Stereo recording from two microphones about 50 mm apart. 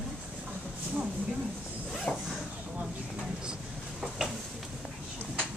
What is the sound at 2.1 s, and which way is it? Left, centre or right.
Speech, left.